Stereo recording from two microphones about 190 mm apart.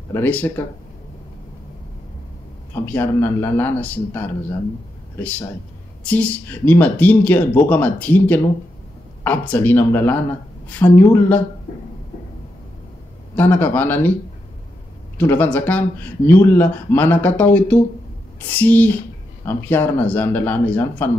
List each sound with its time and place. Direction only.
0.1 s speech: 10° left (ahead or behind)
2.7 s speech: 10° left (ahead or behind)
6.0 s speech: 5° left (ahead or behind)
13.4 s speech: 10° left (ahead or behind)
15.1 s speech: 10° left (ahead or behind)